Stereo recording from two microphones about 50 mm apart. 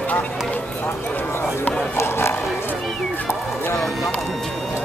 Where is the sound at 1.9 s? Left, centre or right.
Left.